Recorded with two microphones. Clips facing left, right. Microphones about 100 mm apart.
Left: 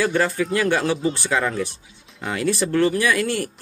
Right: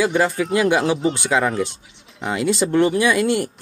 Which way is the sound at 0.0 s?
15° right (ahead or behind).